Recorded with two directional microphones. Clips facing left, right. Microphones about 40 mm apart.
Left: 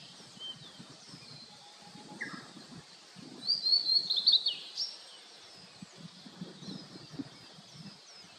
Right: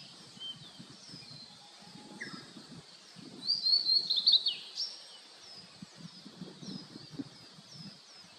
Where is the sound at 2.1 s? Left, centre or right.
Left.